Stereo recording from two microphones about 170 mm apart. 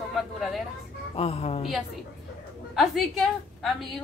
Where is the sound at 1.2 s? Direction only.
35° left (ahead or behind).